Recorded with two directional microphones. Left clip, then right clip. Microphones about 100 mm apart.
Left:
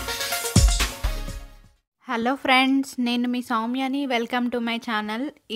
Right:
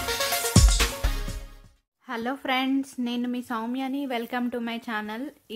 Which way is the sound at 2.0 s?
20° left (ahead or behind).